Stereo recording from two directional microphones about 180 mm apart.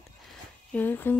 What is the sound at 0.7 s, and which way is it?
Speech, 10° left (ahead or behind).